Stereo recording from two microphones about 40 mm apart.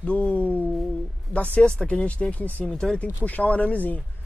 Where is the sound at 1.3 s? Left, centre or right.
Left.